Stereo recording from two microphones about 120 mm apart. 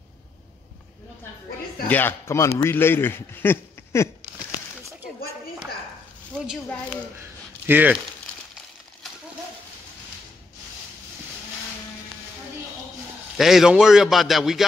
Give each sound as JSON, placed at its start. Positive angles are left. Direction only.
{"t": 1.9, "sound": "speech", "side_deg": 15}
{"t": 7.6, "sound": "speech", "side_deg": -15}
{"t": 13.4, "sound": "a man's voice", "side_deg": 0}